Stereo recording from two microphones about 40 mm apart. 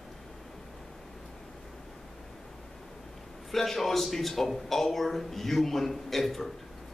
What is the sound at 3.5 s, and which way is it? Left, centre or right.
A man's voice, centre.